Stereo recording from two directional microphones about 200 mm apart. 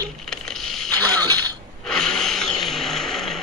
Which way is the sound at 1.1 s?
20° right (ahead or behind).